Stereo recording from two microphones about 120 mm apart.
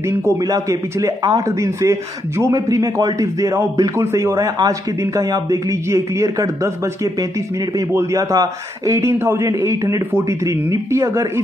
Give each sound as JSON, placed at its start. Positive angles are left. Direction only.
{"t": 0.0, "sound": "speech", "side_deg": -30}